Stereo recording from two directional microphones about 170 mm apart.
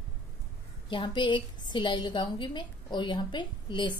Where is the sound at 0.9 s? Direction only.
30° left (ahead or behind).